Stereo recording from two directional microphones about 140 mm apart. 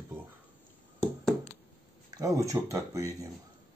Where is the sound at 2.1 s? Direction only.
25° right (ahead or behind).